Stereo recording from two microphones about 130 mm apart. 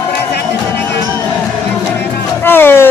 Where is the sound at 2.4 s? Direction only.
15° left (ahead or behind).